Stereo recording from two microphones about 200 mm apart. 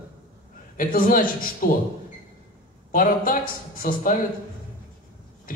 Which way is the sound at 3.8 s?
40° left (ahead or behind).